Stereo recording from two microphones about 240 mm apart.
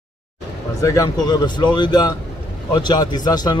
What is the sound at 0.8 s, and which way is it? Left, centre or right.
Speech, centre.